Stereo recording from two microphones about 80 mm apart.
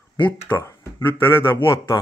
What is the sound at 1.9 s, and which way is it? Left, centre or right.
Speech, left.